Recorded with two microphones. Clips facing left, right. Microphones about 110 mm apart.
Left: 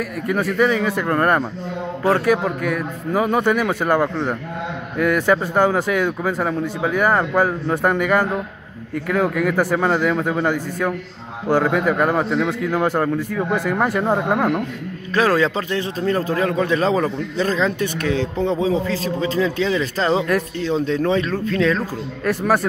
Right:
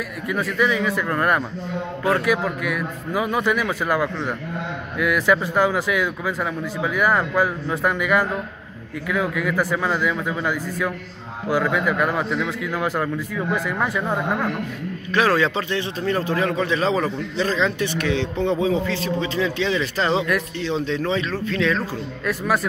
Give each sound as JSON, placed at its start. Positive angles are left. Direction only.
{"t": 0.3, "sound": "a man's voice", "side_deg": 40}
{"t": 5.8, "sound": "a man's voice", "side_deg": 45}